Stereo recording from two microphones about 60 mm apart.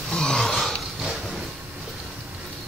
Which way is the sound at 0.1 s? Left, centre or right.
Centre.